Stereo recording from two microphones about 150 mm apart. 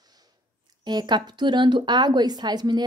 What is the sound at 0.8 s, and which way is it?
A woman's voice, 30° right (ahead or behind).